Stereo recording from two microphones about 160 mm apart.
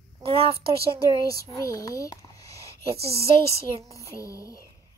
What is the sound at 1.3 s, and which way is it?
Speech, 20° left (ahead or behind).